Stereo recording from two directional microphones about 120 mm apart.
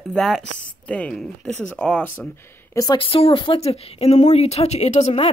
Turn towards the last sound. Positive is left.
turn(degrees=65)  # may be behind; listen again after turning